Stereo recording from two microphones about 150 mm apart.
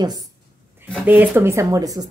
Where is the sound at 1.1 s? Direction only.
15° right (ahead or behind).